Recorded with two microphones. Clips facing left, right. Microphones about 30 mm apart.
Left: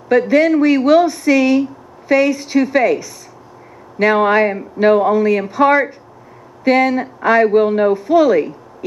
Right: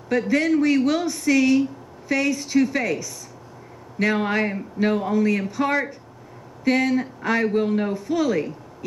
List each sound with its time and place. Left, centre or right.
0.3 s a woman's voice: centre